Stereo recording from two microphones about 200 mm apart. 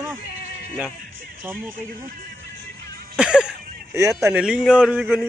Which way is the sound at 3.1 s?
5° right (ahead or behind).